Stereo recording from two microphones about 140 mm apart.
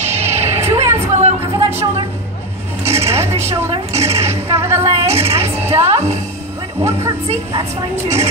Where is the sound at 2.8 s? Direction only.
45° right (ahead or behind).